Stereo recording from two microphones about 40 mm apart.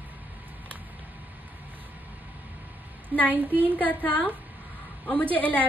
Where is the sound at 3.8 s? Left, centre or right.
Left.